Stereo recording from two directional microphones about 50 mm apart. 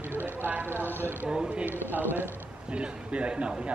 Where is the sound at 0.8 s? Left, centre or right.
Left.